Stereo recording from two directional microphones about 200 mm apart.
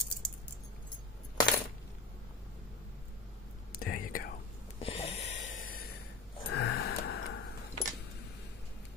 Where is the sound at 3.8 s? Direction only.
45° left (ahead or behind).